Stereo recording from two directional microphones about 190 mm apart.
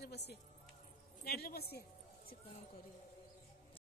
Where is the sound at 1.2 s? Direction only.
55° left (ahead or behind).